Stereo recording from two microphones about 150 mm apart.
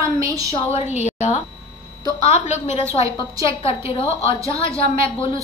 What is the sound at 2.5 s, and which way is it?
A woman's voice, 50° left (ahead or behind).